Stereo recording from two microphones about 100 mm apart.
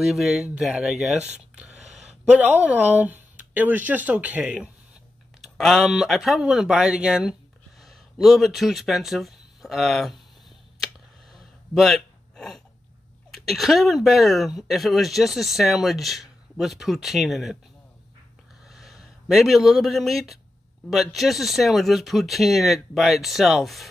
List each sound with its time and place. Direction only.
0.0 s speech: 5° right (ahead or behind)
2.6 s speech: 15° right (ahead or behind)
5.4 s speech: centre (ahead or behind)
11.3 s a sound: centre (ahead or behind)
13.3 s speech: centre (ahead or behind)
18.7 s speech: centre (ahead or behind)